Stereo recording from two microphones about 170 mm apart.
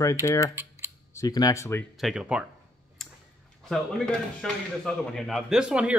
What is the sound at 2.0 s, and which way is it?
Speech, 5° right (ahead or behind).